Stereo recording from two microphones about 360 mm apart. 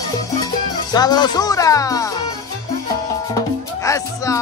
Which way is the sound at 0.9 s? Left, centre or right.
Centre.